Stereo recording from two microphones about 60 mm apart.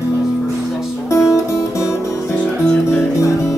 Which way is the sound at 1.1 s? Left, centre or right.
Left.